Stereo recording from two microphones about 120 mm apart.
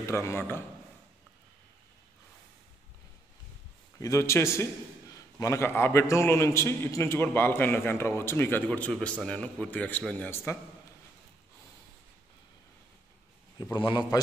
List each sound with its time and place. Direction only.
0.0 s a man's voice: 25° left (ahead or behind)
4.0 s a man's voice: 25° left (ahead or behind)
13.7 s a man's voice: 40° left (ahead or behind)